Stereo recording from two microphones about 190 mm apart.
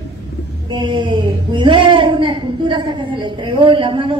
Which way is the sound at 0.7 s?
25° right (ahead or behind).